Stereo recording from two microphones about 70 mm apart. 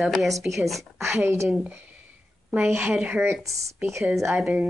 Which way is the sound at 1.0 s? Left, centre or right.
Right.